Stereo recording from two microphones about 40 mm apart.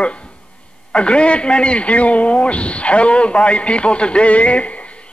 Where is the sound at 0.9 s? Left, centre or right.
Left.